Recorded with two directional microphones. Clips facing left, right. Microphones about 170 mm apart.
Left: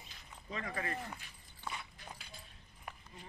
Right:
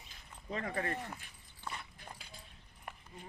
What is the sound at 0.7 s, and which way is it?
Speech, 40° right (ahead or behind).